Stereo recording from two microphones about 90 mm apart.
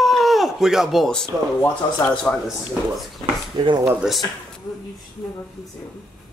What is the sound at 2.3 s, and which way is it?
Speech, 25° left (ahead or behind).